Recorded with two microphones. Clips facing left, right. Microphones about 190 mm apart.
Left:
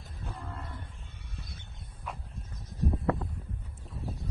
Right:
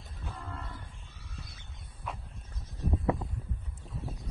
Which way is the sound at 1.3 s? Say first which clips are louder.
Left 1 dB; 30° left (ahead or behind).